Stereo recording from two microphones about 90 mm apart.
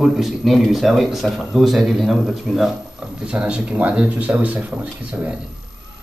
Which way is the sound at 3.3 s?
10° right (ahead or behind).